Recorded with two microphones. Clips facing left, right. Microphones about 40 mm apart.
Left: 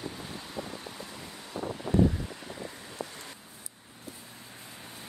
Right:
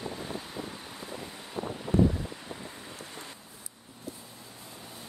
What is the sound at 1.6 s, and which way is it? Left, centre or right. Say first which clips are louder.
Wind noise: even; right.